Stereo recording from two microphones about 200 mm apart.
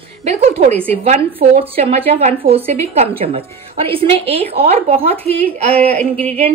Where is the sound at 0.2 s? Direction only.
30° right (ahead or behind).